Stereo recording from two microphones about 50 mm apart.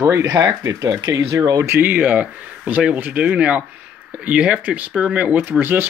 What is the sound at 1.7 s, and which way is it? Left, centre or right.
Speech, right.